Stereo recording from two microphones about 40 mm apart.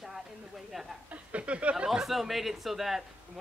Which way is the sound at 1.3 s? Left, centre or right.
Right.